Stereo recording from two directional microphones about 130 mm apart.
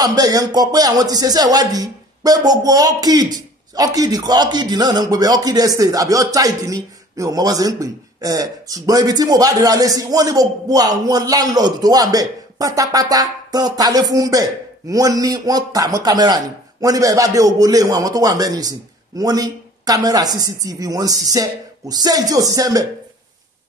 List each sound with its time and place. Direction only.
0.0 s speech: 30° right (ahead or behind)